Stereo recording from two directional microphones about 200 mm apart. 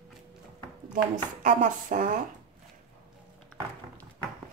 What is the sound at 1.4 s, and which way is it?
Speech, 40° right (ahead or behind).